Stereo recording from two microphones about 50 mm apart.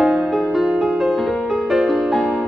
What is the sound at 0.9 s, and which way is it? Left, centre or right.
Music, centre.